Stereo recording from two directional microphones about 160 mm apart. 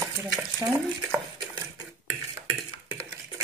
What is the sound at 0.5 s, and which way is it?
Speech, 20° right (ahead or behind).